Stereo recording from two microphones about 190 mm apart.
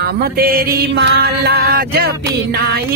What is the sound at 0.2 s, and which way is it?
Mantra, 50° right (ahead or behind).